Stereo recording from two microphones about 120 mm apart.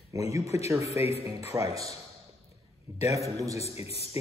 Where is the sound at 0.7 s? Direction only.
25° right (ahead or behind).